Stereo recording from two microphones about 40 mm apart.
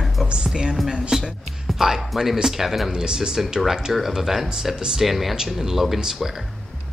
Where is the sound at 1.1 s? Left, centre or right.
Centre.